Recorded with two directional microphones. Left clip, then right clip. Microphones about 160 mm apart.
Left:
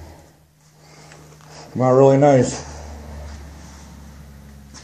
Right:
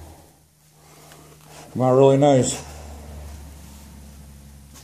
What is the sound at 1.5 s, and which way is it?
Speech, 15° right (ahead or behind).